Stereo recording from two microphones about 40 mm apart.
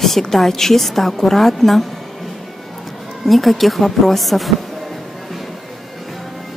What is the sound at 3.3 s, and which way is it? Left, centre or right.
A woman's voice, centre.